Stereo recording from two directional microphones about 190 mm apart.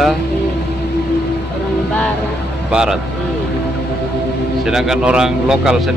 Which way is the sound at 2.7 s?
5° right (ahead or behind).